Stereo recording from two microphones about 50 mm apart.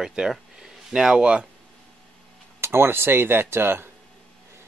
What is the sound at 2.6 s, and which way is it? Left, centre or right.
Speech, right.